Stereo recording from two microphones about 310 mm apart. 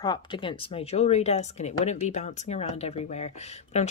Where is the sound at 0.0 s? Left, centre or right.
Centre.